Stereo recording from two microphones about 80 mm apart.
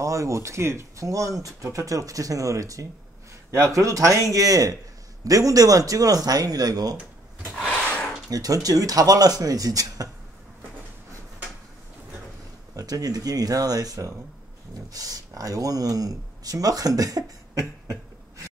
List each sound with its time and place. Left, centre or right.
0.0 s speech: right
8.3 s speech: right
12.7 s speech: right